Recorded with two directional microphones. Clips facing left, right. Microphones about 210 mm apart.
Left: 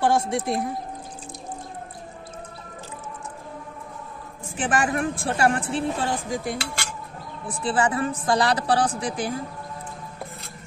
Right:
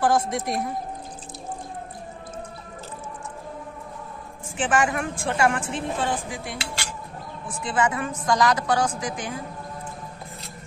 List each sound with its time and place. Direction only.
0.0 s speech: 25° left (ahead or behind)
4.6 s speech: 35° left (ahead or behind)
7.4 s speech: 35° left (ahead or behind)